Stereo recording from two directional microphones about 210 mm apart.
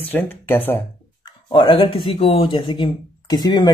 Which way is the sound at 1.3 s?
25° left (ahead or behind).